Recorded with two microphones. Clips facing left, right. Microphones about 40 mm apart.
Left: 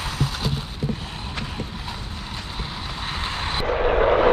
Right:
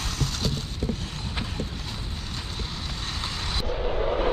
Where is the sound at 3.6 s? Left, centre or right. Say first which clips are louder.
Left 9 dB; left.